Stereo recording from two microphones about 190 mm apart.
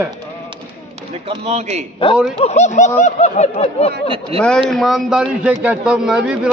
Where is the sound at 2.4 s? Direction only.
35° left (ahead or behind).